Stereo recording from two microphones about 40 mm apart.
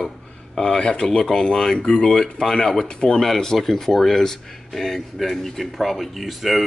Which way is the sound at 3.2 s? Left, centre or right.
Centre.